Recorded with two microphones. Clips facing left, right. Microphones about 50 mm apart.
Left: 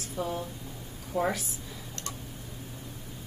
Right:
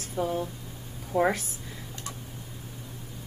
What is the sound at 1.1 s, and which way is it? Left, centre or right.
Speech, right.